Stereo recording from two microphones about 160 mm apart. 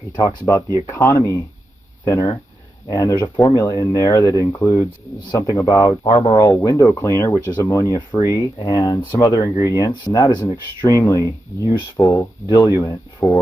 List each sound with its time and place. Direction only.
0.1 s speech: 20° left (ahead or behind)
13.2 s speech: centre (ahead or behind)